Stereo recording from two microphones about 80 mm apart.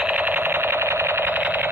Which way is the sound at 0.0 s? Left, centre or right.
Right.